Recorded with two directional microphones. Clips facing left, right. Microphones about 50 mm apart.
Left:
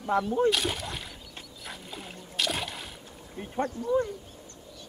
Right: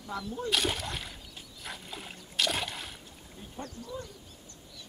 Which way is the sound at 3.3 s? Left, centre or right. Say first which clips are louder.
Left 12 dB; left.